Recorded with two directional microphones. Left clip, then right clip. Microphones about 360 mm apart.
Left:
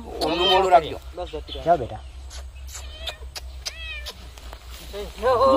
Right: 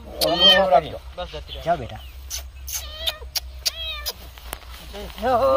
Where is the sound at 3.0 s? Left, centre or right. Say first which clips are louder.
Right 8 dB; centre.